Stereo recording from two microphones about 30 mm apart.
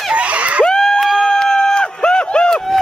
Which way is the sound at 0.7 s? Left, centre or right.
Left.